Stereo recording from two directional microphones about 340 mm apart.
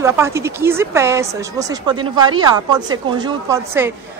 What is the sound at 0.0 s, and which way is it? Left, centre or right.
Speech, centre.